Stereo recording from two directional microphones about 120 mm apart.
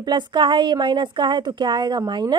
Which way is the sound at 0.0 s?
40° right (ahead or behind).